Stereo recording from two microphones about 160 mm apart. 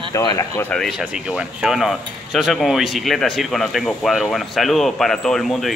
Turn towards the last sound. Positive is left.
turn(degrees=0)  # may be behind; listen again after turning